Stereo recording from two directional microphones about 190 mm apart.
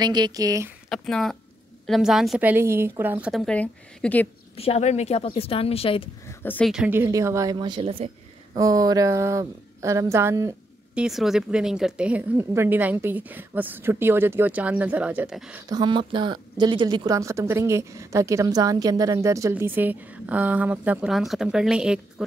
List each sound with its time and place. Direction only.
0.0 s speech: 20° right (ahead or behind)
0.8 s a woman's voice: centre (ahead or behind)
4.6 s speech: 35° left (ahead or behind)
6.2 s a sound: 10° left (ahead or behind)
6.7 s a woman's voice: 5° right (ahead or behind); by 8.1 s 30° right (ahead or behind)
8.5 s a woman's voice: 20° right (ahead or behind)
11.0 s a woman's voice: centre (ahead or behind)
15.7 s a woman's voice: 25° right (ahead or behind); by 22.0 s 5° right (ahead or behind)